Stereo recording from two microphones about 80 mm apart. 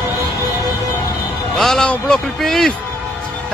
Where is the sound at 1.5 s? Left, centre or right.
Centre.